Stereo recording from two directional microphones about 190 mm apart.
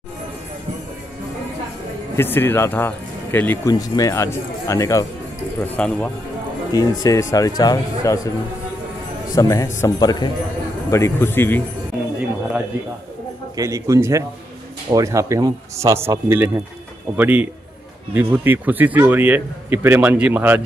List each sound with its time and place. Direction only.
2.1 s speech: 10° left (ahead or behind)
6.7 s speech: 20° left (ahead or behind)
9.3 s speech: 15° left (ahead or behind)
13.6 s a man's voice: 15° right (ahead or behind)